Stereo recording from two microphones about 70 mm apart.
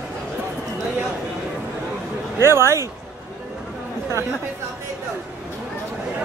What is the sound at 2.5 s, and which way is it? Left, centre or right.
Speech, right.